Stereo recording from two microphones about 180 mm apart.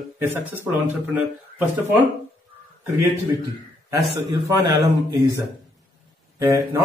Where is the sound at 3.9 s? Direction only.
25° right (ahead or behind).